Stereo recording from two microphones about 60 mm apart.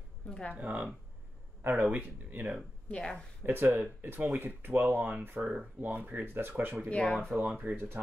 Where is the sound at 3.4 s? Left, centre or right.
Right.